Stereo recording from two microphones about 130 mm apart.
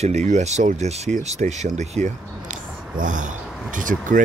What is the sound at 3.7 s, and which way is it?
Speech, 90° right.